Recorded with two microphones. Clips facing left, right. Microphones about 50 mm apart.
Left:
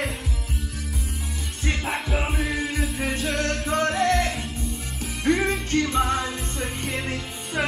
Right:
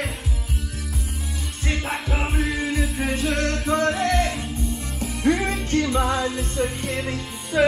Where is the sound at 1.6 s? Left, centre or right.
Centre.